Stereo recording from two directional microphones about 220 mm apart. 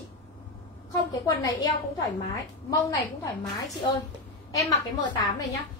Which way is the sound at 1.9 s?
15° left (ahead or behind).